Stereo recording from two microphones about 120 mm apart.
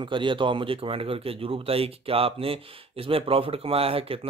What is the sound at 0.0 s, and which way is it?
Speech, 40° right (ahead or behind).